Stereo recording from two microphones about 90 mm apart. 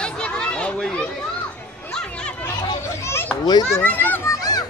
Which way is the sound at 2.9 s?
30° left (ahead or behind).